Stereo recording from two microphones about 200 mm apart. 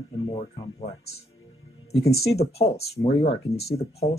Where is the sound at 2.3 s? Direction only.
30° left (ahead or behind).